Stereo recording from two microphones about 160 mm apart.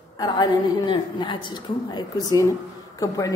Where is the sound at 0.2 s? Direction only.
25° left (ahead or behind).